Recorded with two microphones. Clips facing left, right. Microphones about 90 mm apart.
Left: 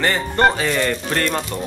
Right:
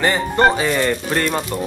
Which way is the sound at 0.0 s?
10° right (ahead or behind).